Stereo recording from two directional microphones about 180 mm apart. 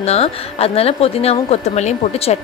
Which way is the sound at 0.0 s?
35° left (ahead or behind).